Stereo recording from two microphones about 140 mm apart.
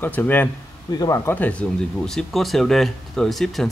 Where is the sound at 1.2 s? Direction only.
10° left (ahead or behind).